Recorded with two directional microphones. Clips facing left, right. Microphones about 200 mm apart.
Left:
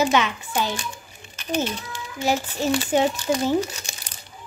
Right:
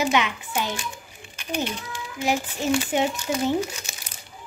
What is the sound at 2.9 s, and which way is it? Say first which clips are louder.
Speech: left 3 dB; 35° left (ahead or behind).